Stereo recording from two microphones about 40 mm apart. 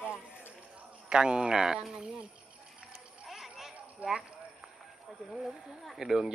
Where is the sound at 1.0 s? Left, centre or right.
Right.